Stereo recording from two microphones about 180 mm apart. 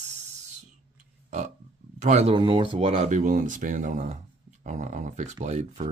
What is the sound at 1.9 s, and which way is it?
Speech, 40° right (ahead or behind).